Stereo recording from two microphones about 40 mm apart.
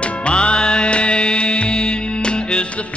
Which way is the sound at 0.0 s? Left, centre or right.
Left.